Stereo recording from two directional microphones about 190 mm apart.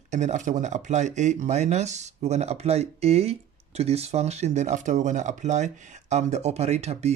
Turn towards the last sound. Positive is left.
turn(degrees=-35)  # may be behind; listen again after turning